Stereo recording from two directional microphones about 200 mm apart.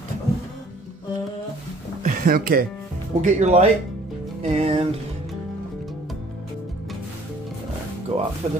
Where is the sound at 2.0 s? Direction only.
45° right (ahead or behind).